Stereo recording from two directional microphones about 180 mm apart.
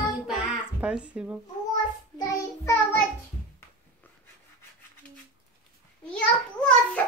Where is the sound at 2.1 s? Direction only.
15° left (ahead or behind).